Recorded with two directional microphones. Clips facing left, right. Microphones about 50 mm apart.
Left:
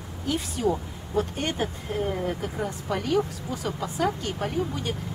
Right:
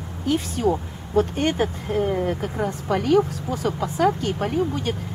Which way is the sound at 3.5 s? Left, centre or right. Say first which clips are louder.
Right 6 dB; centre.